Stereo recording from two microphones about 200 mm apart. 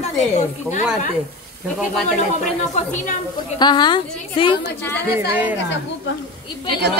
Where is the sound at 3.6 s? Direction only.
20° left (ahead or behind).